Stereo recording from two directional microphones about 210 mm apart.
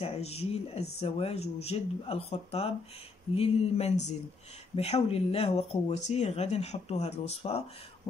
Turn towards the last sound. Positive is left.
turn(degrees=30)  # may be behind; listen again after turning